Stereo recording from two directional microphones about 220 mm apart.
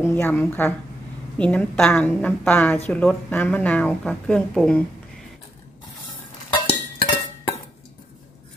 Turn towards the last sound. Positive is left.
turn(degrees=25)  # may be behind; listen again after turning